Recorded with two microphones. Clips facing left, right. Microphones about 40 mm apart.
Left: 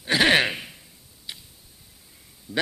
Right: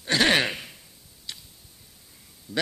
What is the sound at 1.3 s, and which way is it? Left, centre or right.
Tick-tock, centre.